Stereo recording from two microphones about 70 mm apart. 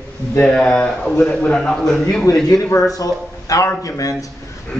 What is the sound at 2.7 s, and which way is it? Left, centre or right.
A man's voice, left.